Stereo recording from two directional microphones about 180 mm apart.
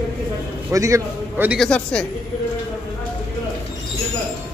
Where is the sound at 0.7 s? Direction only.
15° right (ahead or behind).